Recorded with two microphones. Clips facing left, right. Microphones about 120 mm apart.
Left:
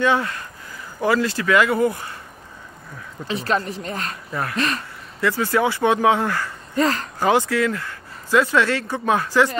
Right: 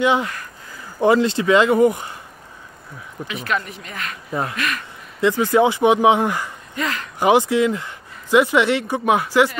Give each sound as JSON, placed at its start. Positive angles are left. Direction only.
{"t": 0.0, "sound": "speech", "side_deg": -15}
{"t": 3.3, "sound": "speech", "side_deg": 35}
{"t": 4.3, "sound": "speech", "side_deg": -20}
{"t": 4.6, "sound": "speech", "side_deg": 30}
{"t": 5.2, "sound": "speech", "side_deg": -20}
{"t": 6.7, "sound": "speech", "side_deg": 35}
{"t": 7.2, "sound": "speech", "side_deg": -15}